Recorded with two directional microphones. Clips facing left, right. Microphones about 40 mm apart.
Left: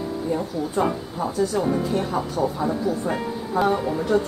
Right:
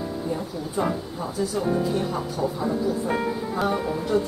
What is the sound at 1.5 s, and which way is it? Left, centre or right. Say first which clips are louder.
Speech: left 1 dB; centre.